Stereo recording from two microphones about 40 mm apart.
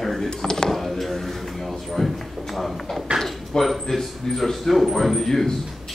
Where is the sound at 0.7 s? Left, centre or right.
Centre.